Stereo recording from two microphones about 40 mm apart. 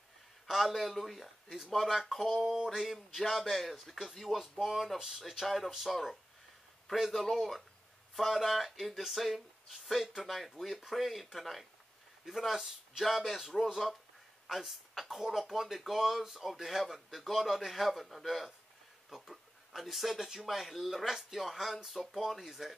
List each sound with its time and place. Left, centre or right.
0.5 s speech: centre
2.3 s speech: centre